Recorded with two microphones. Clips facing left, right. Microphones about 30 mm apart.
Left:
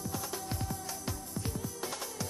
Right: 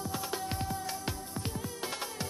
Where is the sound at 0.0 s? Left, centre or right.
Right.